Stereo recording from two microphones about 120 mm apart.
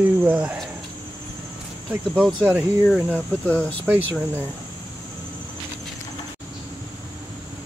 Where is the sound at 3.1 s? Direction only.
10° left (ahead or behind).